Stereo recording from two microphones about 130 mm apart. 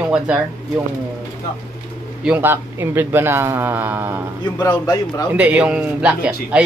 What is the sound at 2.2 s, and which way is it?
A man's voice, 15° right (ahead or behind).